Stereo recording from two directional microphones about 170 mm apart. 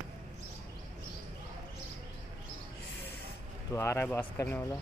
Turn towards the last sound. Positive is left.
turn(degrees=10)  # may be behind; listen again after turning